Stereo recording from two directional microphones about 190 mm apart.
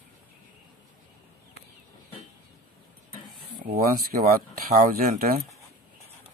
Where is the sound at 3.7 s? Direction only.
50° right (ahead or behind).